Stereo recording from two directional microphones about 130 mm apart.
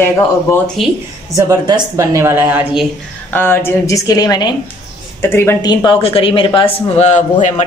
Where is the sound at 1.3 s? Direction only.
30° right (ahead or behind).